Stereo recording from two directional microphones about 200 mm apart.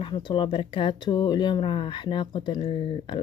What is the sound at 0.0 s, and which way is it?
Speech, 25° left (ahead or behind).